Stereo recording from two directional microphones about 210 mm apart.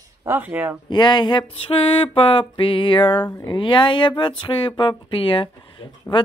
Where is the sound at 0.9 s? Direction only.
20° left (ahead or behind).